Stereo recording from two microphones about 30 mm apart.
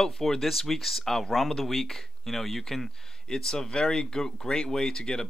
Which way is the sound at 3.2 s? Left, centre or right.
Left.